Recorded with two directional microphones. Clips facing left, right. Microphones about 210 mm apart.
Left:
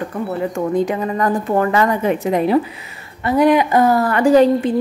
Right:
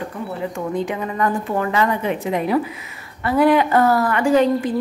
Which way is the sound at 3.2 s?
20° left (ahead or behind).